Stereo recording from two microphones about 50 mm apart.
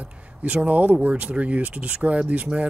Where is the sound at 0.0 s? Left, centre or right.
Right.